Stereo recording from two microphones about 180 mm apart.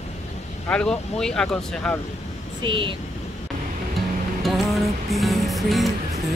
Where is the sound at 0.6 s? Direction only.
5° left (ahead or behind).